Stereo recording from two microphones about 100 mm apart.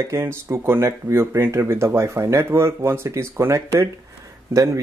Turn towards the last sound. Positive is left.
turn(degrees=-35)  # may be behind; listen again after turning